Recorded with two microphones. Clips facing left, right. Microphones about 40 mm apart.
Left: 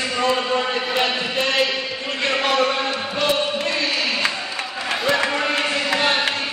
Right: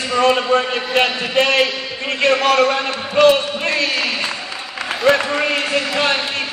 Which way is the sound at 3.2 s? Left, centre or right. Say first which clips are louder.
Right 9 dB; right.